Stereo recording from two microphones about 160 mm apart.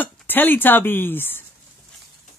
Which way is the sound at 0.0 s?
10° left (ahead or behind).